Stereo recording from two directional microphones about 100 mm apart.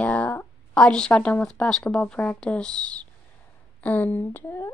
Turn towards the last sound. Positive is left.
turn(degrees=25)  # may be behind; listen again after turning